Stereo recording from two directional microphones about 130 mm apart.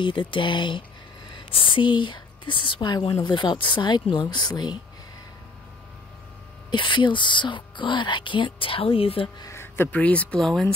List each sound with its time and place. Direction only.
0.0 s a woman's voice: 40° left (ahead or behind)
6.7 s a woman's voice: 40° left (ahead or behind)
9.4 s speech: 20° left (ahead or behind); by 10.7 s 5° left (ahead or behind)